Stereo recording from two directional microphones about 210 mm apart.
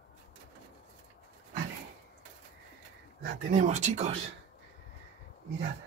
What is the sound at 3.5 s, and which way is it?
Speech, 35° right (ahead or behind).